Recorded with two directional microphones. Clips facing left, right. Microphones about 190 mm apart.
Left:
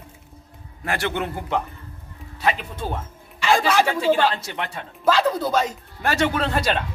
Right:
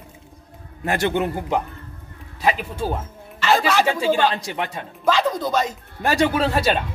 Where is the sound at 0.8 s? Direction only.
20° right (ahead or behind).